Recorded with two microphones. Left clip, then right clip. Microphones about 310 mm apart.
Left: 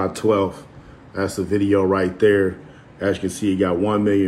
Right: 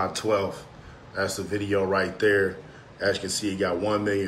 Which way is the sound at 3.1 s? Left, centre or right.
Centre.